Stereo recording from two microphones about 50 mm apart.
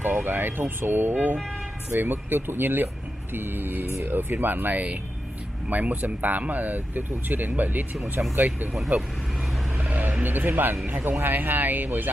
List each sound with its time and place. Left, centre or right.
0.0 s speech: right